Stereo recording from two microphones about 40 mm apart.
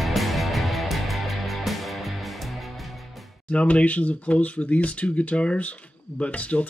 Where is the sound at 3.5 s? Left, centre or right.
Left.